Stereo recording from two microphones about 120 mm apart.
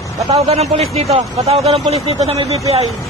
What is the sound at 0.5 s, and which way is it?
Speech, 60° right (ahead or behind).